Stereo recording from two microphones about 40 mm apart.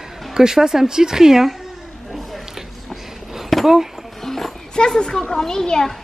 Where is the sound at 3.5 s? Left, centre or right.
Centre.